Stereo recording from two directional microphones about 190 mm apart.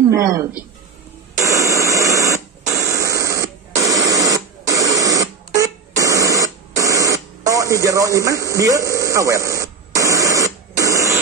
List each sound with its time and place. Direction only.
0.1 s speech: 15° right (ahead or behind)
1.4 s radio: 15° right (ahead or behind)